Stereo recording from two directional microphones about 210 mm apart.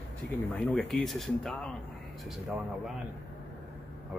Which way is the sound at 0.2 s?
10° left (ahead or behind).